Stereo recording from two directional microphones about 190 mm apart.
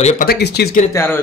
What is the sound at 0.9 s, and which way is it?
Speech, 10° left (ahead or behind).